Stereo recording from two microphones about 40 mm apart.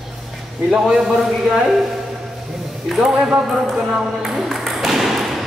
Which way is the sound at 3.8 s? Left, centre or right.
Right.